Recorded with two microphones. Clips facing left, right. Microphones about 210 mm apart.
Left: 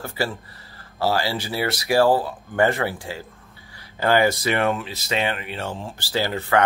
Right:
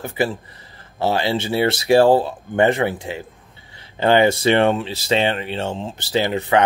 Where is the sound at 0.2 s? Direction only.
20° right (ahead or behind).